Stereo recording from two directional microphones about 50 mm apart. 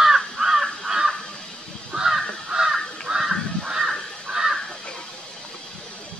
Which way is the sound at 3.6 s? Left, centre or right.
Centre.